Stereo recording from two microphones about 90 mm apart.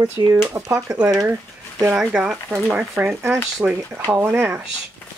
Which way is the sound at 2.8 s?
20° right (ahead or behind).